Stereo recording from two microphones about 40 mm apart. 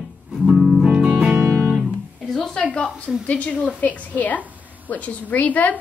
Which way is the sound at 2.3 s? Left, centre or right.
Centre.